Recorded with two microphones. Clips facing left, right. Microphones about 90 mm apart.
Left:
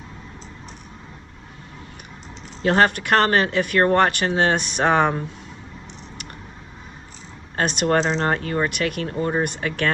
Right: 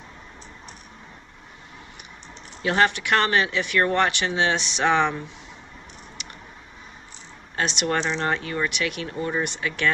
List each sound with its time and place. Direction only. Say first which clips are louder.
2.6 s speech: left 3 dB; 40° left (ahead or behind)
7.5 s speech: left 5 dB; 45° left (ahead or behind)
9.1 s speech: left 4 dB; 35° left (ahead or behind)
9.4 s speech: left 3 dB; 45° left (ahead or behind)